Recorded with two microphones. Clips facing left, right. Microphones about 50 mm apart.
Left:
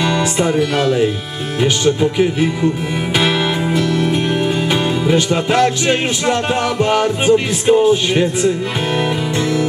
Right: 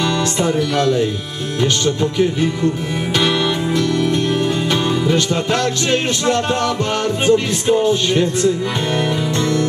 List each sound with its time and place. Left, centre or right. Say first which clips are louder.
0.0 s music: left 2 dB; centre
2.1 s music: left 1 dB; centre